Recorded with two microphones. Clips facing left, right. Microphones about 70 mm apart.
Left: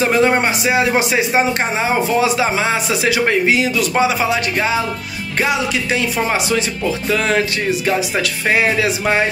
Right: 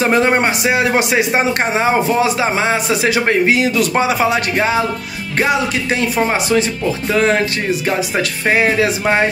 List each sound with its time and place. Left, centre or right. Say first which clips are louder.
0.0 s a man's voice: right 1 dB; right
5.4 s a man's voice: right 2 dB; right